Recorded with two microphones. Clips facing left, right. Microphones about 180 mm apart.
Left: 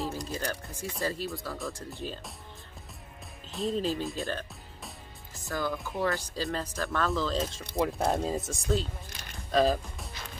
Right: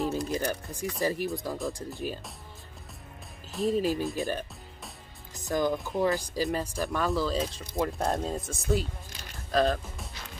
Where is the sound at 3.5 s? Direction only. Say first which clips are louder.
Right 3 dB; 5° right (ahead or behind).